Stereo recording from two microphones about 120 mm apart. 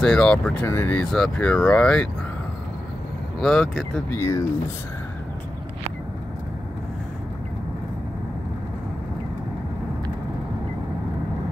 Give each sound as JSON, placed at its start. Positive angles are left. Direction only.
{"t": 0.0, "sound": "speech", "side_deg": 5}
{"t": 3.3, "sound": "speech", "side_deg": 5}
{"t": 4.1, "sound": "speech", "side_deg": 25}